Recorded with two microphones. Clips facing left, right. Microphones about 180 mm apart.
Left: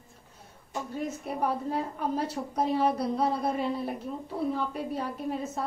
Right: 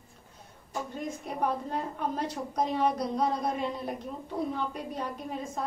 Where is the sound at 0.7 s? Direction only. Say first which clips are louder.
Left 2 dB; 5° left (ahead or behind).